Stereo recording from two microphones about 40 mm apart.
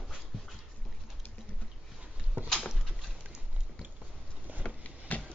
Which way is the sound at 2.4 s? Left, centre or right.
Centre.